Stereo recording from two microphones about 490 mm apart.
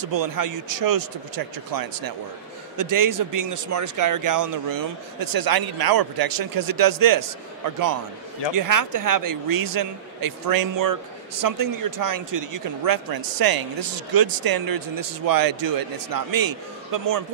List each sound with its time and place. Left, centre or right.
0.0 s speech: right
8.5 s speech: right